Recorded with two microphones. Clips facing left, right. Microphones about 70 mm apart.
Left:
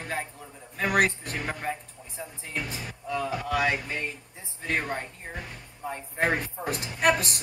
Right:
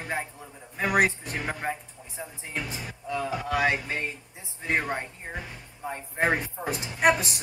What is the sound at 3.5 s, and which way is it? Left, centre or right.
Music, right.